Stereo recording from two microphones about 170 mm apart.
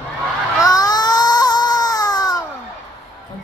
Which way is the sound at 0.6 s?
20° left (ahead or behind).